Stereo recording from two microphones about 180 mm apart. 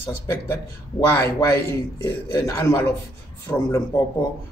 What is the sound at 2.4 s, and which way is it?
Speech, 15° left (ahead or behind).